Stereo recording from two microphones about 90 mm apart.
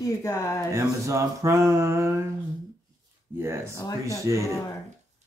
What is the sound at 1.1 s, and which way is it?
Mantra, 35° right (ahead or behind).